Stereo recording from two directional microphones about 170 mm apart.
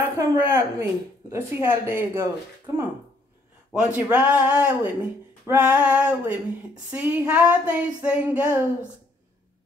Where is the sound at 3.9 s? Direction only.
5° right (ahead or behind).